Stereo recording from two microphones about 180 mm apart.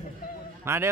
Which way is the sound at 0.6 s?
15° right (ahead or behind).